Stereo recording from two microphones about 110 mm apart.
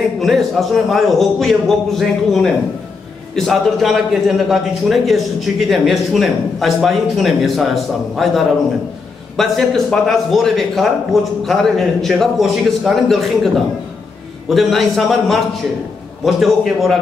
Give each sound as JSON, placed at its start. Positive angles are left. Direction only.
{"t": 0.2, "sound": "a man's voice", "side_deg": 0}
{"t": 14.5, "sound": "a man's voice", "side_deg": 0}